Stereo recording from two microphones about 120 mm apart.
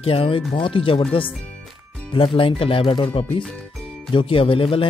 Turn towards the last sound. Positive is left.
turn(degrees=50)  # may be behind; listen again after turning